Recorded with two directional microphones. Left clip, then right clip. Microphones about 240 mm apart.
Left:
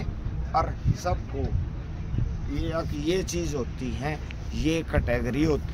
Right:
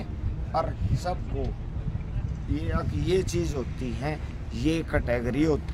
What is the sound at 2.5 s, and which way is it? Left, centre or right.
Speech, centre.